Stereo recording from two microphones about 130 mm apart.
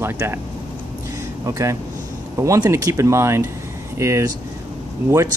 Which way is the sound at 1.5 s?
25° right (ahead or behind).